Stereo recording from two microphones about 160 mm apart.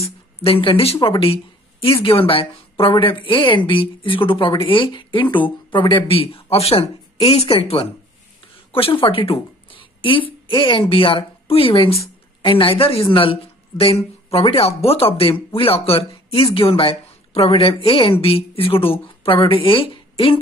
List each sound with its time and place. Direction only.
0.0 s a woman's voice: 35° left (ahead or behind)